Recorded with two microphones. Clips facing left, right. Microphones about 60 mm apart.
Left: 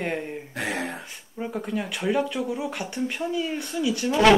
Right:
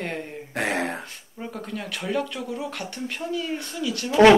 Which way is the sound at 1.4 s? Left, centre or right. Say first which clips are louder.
Left 4 dB; centre.